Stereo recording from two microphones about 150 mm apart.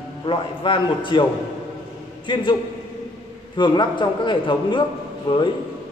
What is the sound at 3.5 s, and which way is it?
A man's voice, 35° left (ahead or behind).